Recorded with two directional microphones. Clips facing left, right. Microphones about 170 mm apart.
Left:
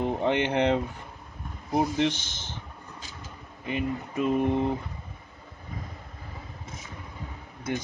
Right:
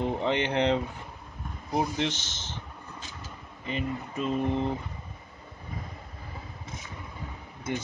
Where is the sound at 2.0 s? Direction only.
55° left (ahead or behind).